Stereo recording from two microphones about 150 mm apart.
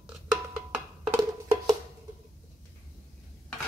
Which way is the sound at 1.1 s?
20° right (ahead or behind).